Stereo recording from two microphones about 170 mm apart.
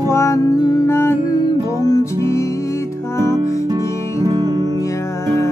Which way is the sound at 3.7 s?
20° right (ahead or behind).